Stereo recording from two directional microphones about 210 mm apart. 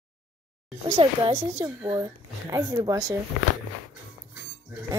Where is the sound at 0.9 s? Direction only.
25° right (ahead or behind).